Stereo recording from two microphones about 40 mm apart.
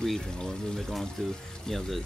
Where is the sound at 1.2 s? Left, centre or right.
Centre.